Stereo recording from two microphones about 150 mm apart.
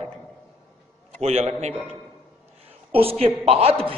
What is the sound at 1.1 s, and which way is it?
A man's voice, 45° right (ahead or behind).